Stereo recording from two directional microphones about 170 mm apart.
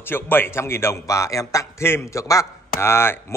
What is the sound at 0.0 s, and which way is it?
A man's voice, 10° left (ahead or behind).